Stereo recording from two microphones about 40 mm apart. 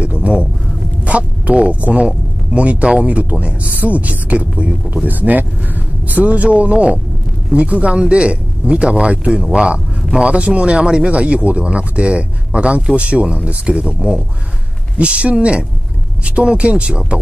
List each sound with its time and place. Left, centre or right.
0.0 s a sound: right
1.0 s speech: right
10.2 s speech: right